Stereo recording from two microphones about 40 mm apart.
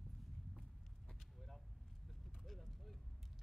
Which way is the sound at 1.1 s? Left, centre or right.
Centre.